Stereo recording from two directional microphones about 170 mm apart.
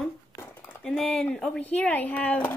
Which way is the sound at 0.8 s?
5° left (ahead or behind).